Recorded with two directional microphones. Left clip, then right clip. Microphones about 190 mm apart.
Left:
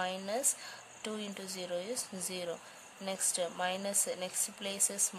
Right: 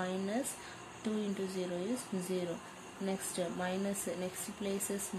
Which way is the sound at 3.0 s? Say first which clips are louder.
Left 2 dB; 45° left (ahead or behind).